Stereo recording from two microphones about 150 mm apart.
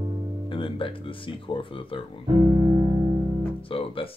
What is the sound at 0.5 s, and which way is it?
Speech, 35° left (ahead or behind).